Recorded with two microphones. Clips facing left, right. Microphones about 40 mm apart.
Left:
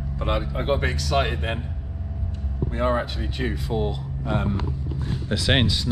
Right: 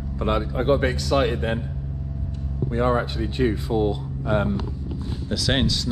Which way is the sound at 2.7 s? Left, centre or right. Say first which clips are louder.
Right 2 dB; left.